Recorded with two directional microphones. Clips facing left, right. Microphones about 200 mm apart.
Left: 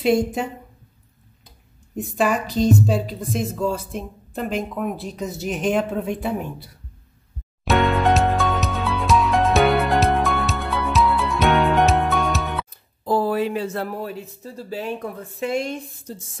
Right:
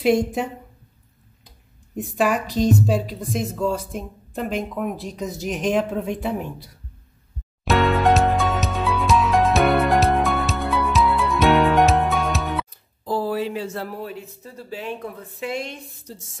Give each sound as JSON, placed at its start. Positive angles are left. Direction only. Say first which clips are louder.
{"t": 0.0, "sound": "a woman's voice", "louder": "even", "side_deg": 0}
{"t": 2.0, "sound": "a woman's voice", "louder": "even", "side_deg": 0}
{"t": 7.6, "sound": "music", "louder": "even", "side_deg": 0}
{"t": 13.0, "sound": "speech", "louder": "left 3 dB", "side_deg": 55}
{"t": 14.0, "sound": "speech", "louder": "left 2 dB", "side_deg": 40}
{"t": 15.4, "sound": "speech", "louder": "left 5 dB", "side_deg": 50}